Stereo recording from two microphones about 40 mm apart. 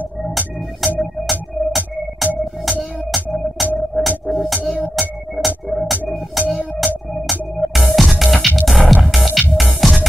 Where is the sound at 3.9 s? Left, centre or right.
Centre.